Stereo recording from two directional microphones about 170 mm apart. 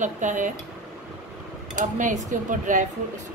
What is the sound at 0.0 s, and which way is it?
Speech, 45° right (ahead or behind).